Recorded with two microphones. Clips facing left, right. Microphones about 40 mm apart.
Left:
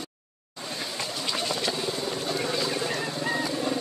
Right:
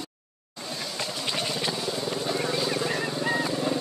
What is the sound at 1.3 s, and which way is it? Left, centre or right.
Vehicle, centre.